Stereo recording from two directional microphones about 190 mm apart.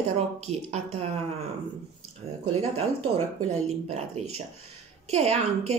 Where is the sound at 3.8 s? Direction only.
35° right (ahead or behind).